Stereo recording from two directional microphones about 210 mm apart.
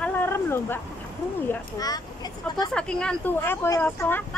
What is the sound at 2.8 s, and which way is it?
Speech, 5° left (ahead or behind).